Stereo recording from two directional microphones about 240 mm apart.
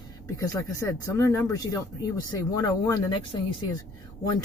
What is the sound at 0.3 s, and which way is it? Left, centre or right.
Speech, centre.